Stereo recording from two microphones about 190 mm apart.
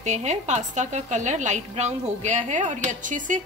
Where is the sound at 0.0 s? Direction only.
35° right (ahead or behind).